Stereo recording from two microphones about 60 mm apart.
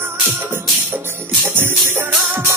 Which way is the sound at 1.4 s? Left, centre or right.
Right.